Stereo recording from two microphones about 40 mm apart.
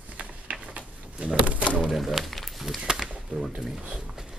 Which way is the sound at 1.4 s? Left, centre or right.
Right.